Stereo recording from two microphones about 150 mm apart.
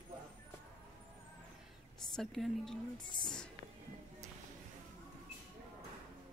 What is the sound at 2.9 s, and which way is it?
Speech, 30° left (ahead or behind).